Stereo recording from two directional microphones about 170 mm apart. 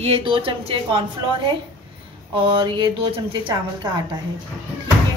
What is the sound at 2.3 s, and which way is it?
A woman's voice, 30° right (ahead or behind).